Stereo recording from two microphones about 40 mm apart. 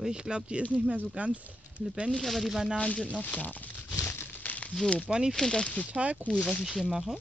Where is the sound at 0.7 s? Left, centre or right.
Right.